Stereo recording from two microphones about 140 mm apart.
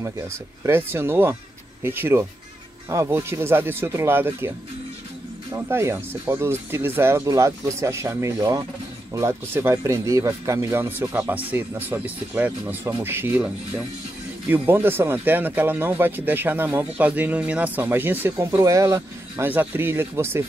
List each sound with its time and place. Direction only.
0.7 s speech: 15° right (ahead or behind)
5.6 s speech: 15° right (ahead or behind)